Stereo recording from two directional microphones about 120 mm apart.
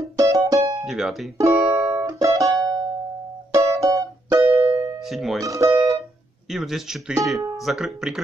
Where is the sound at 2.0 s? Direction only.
25° right (ahead or behind).